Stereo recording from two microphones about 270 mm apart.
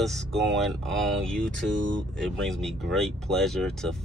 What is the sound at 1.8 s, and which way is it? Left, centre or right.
Speech, right.